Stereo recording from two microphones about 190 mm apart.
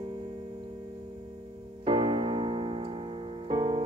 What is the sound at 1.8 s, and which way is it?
Piano, 25° right (ahead or behind).